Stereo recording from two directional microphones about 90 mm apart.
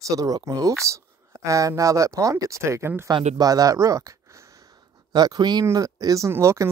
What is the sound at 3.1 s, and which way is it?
Speech, 55° right (ahead or behind).